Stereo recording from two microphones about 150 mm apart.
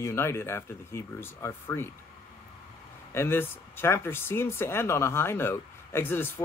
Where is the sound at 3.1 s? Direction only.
15° left (ahead or behind).